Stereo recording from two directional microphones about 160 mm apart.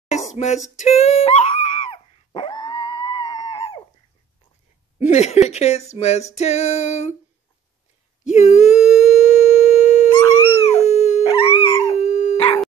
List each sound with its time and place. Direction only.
0.7 s dog: 45° left (ahead or behind)
4.9 s a sound: 45° left (ahead or behind)
8.3 s humming: 45° left (ahead or behind)
10.1 s dog: 30° left (ahead or behind)
10.7 s dog: 45° left (ahead or behind)
11.6 s howl: 35° left (ahead or behind)
12.0 s howl: 45° left (ahead or behind)